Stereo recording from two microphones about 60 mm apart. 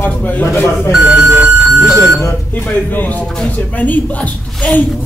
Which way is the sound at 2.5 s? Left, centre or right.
Left.